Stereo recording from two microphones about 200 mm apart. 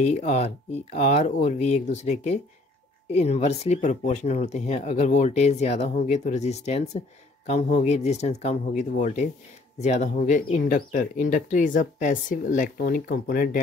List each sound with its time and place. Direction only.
0.0 s speech: 35° left (ahead or behind)